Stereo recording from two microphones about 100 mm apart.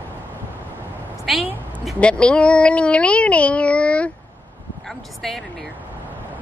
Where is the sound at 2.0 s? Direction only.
10° left (ahead or behind).